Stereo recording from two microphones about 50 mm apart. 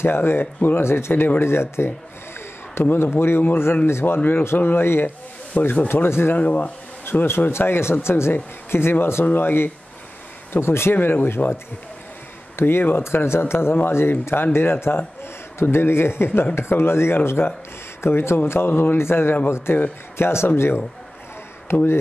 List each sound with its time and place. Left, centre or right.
0.0 s a man's voice: left
5.5 s speech: left
6.0 s speech: left
6.3 s speech: left
7.1 s a man's voice: left